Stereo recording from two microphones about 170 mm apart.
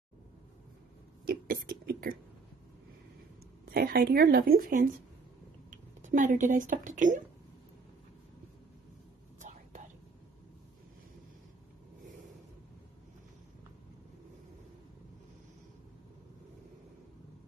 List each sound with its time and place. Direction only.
1.2 s a sound: 60° right (ahead or behind)
3.6 s speech: 60° right (ahead or behind)
9.4 s whispering: 45° right (ahead or behind)